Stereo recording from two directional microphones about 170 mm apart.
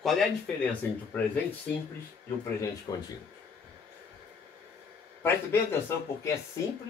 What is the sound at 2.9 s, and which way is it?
Speech, 20° left (ahead or behind).